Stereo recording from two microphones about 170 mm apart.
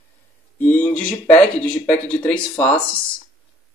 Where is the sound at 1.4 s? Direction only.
5° left (ahead or behind).